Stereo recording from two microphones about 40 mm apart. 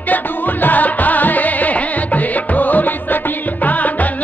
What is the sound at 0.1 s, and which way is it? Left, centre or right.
Music, left.